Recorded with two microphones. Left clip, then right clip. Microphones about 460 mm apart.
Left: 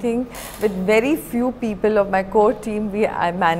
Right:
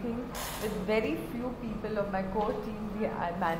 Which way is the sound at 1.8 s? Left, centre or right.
Left.